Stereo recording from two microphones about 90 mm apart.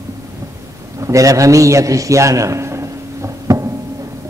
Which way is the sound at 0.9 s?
35° right (ahead or behind).